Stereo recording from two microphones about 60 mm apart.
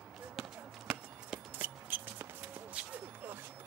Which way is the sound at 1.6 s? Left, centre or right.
Right.